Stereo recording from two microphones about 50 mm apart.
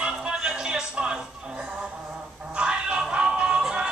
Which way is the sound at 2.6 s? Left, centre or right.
Right.